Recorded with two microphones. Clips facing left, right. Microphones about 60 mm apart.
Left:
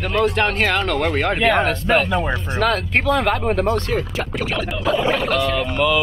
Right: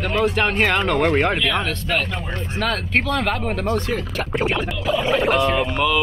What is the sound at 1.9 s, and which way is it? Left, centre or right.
Speech, left.